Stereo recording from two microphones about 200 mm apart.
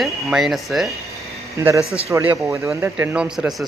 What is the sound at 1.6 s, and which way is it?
Speech, 10° right (ahead or behind).